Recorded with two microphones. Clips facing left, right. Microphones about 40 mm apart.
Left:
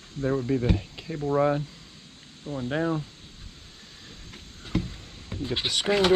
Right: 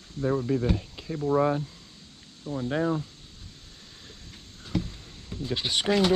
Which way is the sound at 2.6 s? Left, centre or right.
Left.